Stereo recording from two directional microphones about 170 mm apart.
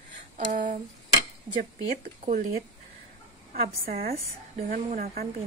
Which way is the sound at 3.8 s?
60° right (ahead or behind).